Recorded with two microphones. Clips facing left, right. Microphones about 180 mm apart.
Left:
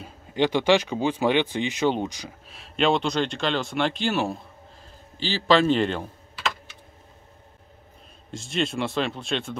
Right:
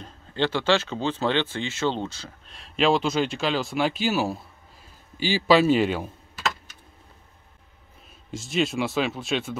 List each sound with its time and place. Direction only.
0.0 s speech: 15° left (ahead or behind)
2.4 s a man's voice: centre (ahead or behind)
6.3 s typing: 45° right (ahead or behind)
8.3 s speech: centre (ahead or behind)